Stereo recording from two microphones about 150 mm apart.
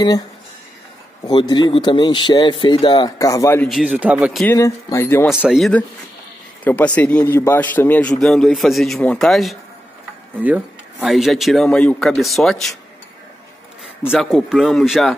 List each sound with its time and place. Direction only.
1.2 s speech: 30° left (ahead or behind)
3.6 s a man's voice: centre (ahead or behind)
4.5 s a man's voice: 20° left (ahead or behind)
5.3 s a man's voice: 5° right (ahead or behind)
6.6 s a man's voice: 10° left (ahead or behind)
10.3 s a man's voice: 10° right (ahead or behind)
14.0 s a man's voice: 5° right (ahead or behind)